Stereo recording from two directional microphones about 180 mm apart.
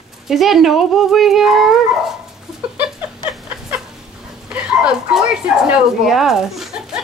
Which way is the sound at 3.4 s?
5° right (ahead or behind).